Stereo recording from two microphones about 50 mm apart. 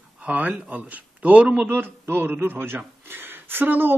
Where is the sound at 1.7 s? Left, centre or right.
Right.